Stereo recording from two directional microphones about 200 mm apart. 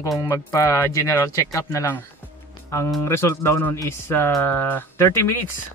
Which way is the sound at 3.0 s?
15° left (ahead or behind).